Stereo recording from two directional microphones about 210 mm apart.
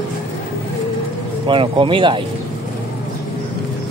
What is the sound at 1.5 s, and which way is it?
Speech, 25° right (ahead or behind).